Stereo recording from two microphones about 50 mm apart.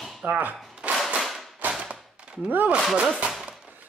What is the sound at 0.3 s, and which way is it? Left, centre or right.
Speech, right.